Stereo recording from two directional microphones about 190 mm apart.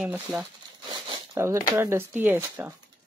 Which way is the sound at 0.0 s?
5° right (ahead or behind).